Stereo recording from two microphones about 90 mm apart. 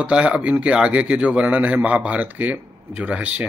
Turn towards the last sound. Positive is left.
turn(degrees=-15)  # may be behind; listen again after turning